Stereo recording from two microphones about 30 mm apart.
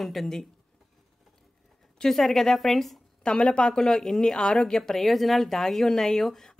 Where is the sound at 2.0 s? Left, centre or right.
Left.